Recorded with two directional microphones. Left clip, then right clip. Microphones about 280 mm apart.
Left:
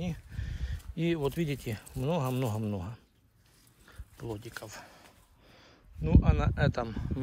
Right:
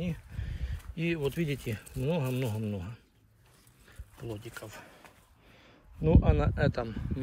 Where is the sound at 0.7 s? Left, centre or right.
Left.